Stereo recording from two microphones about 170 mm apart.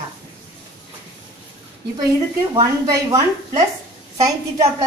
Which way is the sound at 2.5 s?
20° right (ahead or behind).